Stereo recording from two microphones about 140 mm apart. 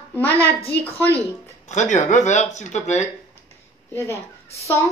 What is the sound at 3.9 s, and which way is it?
Speech, 20° left (ahead or behind).